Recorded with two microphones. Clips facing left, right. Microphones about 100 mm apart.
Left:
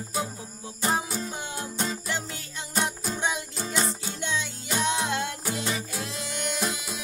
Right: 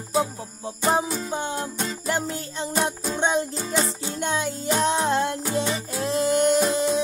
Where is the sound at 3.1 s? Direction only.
30° right (ahead or behind).